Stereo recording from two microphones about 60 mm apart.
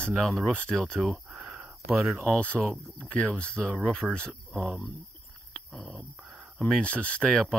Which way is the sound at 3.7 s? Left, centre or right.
Centre.